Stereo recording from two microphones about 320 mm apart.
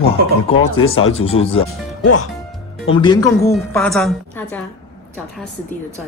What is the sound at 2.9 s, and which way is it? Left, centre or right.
Speech, centre.